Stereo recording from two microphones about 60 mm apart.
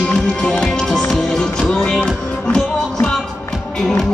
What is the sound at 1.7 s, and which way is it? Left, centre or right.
Music, centre.